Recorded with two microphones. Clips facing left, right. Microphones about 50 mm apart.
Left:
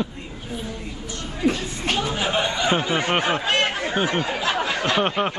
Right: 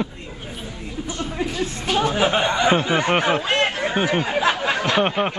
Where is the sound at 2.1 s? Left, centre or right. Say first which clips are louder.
Right 4 dB; right.